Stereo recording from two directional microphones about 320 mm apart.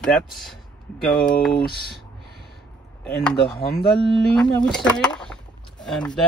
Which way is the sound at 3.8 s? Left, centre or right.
Left.